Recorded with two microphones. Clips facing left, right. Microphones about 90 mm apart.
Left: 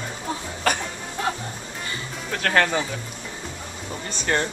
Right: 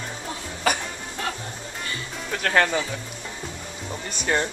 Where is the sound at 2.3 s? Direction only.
Centre (ahead or behind).